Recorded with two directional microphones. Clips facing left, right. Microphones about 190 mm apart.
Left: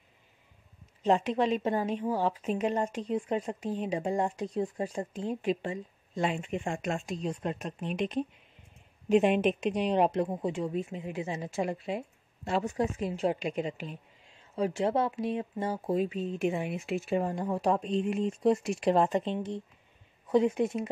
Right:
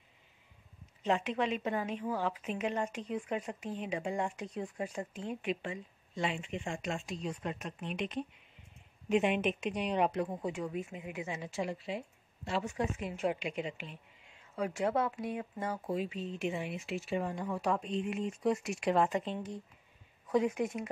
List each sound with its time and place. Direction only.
1.0 s a woman's voice: 35° left (ahead or behind)
7.2 s a woman's voice: 35° left (ahead or behind)
14.5 s speech: 25° left (ahead or behind)
15.9 s a woman's voice: 45° left (ahead or behind); by 20.9 s 25° left (ahead or behind)